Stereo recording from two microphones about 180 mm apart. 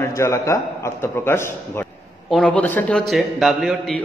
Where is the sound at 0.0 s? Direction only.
15° left (ahead or behind).